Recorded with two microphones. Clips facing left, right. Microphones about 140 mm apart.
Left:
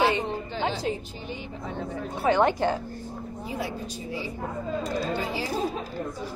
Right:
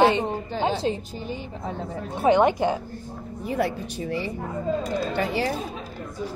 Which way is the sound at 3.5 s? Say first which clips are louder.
Right 8 dB; 65° right (ahead or behind).